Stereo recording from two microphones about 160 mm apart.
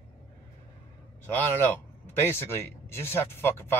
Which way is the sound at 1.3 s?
10° left (ahead or behind).